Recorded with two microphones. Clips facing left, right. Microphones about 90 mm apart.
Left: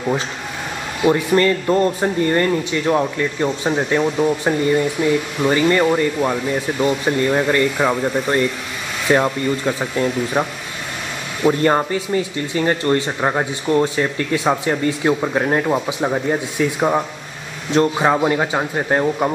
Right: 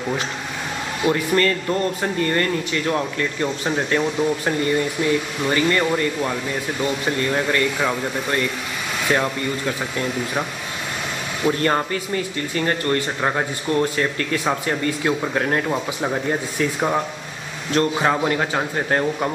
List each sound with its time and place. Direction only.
1.0 s speech: 20° left (ahead or behind)
7.7 s speech: 5° left (ahead or behind)
9.1 s speech: 20° left (ahead or behind)
11.4 s speech: 20° left (ahead or behind)